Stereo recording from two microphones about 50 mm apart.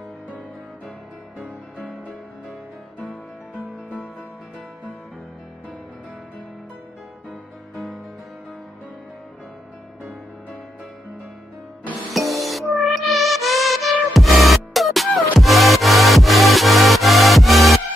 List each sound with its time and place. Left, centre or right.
1.4 s music: right
7.2 s music: centre
12.1 s music: centre